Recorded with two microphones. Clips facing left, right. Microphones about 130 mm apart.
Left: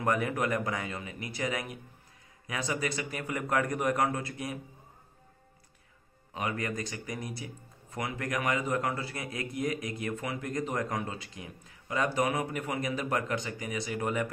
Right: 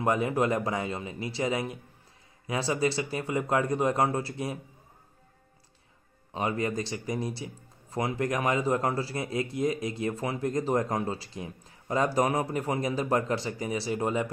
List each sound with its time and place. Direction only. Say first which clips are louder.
0.0 s speech: right 3 dB; 25° right (ahead or behind)
6.3 s speech: right 4 dB; 30° right (ahead or behind)